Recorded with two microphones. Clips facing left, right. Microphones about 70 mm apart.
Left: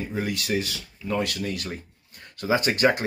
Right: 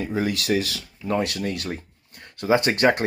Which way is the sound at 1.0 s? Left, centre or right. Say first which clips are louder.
Right 3 dB; right.